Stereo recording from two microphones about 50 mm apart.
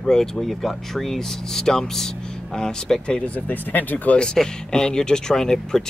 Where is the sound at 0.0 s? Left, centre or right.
Centre.